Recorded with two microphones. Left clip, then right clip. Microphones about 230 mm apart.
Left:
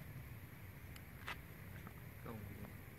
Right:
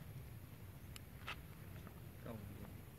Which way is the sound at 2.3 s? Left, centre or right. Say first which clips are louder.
Even; left.